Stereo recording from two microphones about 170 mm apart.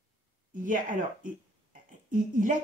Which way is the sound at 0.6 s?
50° right (ahead or behind).